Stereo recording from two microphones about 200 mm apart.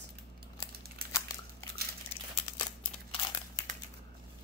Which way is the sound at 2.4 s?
25° left (ahead or behind).